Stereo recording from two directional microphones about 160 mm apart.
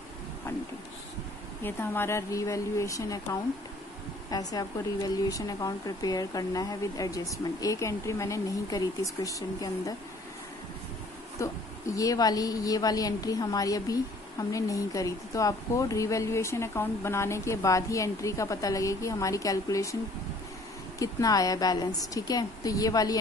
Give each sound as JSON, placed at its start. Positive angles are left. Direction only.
{"t": 1.6, "sound": "a woman's voice", "side_deg": 15}
{"t": 11.3, "sound": "speech", "side_deg": 20}
{"t": 21.0, "sound": "speech", "side_deg": 20}